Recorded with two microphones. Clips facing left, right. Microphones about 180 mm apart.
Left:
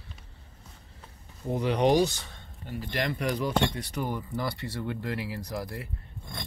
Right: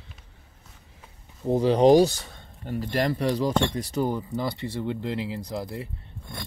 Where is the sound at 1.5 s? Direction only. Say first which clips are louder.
Right 7 dB; 30° right (ahead or behind).